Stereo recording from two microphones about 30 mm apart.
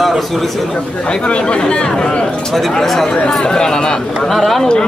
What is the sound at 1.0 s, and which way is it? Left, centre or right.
Speech, left.